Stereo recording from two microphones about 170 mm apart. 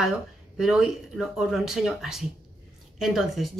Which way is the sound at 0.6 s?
5° right (ahead or behind).